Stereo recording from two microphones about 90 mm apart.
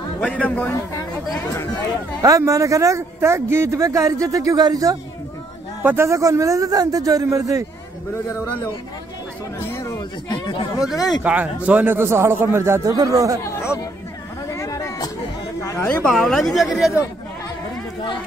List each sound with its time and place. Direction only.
0.2 s a man's voice: 15° left (ahead or behind)
0.9 s chatter: 35° left (ahead or behind)
2.2 s a man's voice: 35° right (ahead or behind)
5.8 s a man's voice: 25° right (ahead or behind)
10.3 s speech: 60° left (ahead or behind)
10.8 s speech: centre (ahead or behind)
11.2 s a man's voice: 15° right (ahead or behind); by 13.4 s 40° right (ahead or behind)
13.4 s speech: 30° left (ahead or behind)
14.5 s a sound: 35° left (ahead or behind)
15.6 s chatter: 35° left (ahead or behind)
15.9 s speech: 5° left (ahead or behind)